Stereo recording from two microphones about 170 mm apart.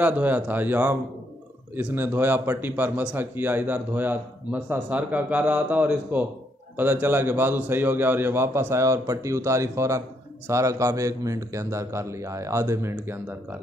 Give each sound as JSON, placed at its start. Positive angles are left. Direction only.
{"t": 0.0, "sound": "a man's voice", "side_deg": -10}